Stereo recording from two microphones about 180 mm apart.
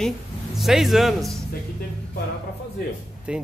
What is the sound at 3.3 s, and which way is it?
Speech, 5° right (ahead or behind).